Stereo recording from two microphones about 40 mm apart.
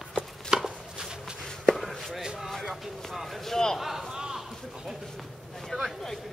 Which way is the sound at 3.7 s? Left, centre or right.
Centre.